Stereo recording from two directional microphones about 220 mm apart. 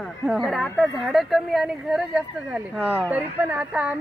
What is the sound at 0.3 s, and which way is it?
Speech, centre (ahead or behind).